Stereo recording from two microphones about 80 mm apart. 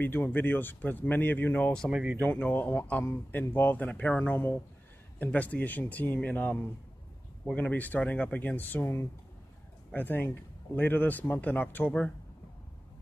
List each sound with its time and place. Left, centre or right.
0.0 s speech: left
1.6 s speech: centre
1.9 s speech: centre
2.2 s speech: left